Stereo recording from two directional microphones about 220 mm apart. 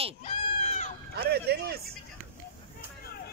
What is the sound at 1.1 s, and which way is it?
Speech, 45° right (ahead or behind).